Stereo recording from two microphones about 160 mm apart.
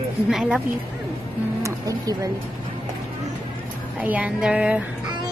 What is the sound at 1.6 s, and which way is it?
Speech, 20° right (ahead or behind).